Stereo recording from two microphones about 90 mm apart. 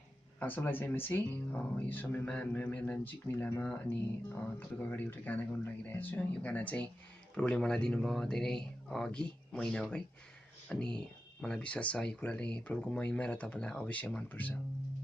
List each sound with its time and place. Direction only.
0.4 s speech: 20° left (ahead or behind)